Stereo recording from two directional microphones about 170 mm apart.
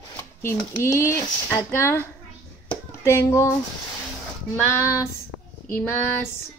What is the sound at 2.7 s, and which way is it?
Hands, 15° left (ahead or behind).